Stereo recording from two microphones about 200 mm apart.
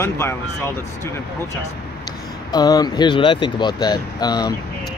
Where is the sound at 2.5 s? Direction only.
20° left (ahead or behind).